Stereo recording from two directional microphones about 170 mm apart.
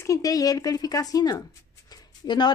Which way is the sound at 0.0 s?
20° left (ahead or behind).